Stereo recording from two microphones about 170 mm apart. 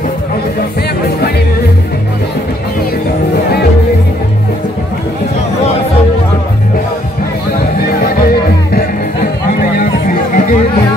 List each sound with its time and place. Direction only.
8.0 s music: 60° left (ahead or behind)
9.8 s music: 50° left (ahead or behind)